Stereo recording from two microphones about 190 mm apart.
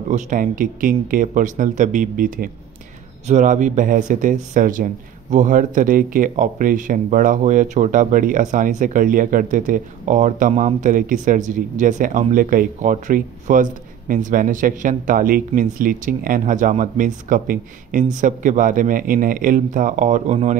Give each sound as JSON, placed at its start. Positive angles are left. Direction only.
{"t": 0.1, "sound": "speech", "side_deg": -45}